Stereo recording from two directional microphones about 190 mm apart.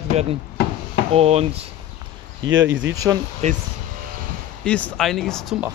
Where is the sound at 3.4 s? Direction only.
35° right (ahead or behind).